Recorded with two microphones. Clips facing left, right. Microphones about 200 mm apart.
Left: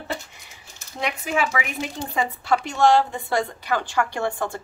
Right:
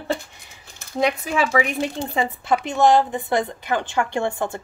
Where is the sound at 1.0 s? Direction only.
35° right (ahead or behind).